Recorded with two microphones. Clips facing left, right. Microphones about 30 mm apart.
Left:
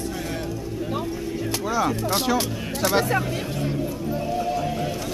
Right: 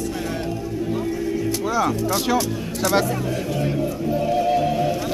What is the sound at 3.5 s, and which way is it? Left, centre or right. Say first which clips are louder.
Music: right 4 dB; centre.